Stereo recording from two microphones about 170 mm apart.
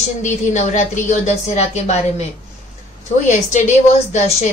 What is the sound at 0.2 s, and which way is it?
A woman's voice, 45° left (ahead or behind).